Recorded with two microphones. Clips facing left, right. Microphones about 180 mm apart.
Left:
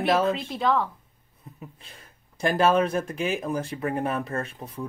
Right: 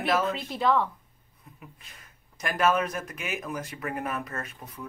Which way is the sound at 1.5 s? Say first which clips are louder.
Left 5 dB; 30° left (ahead or behind).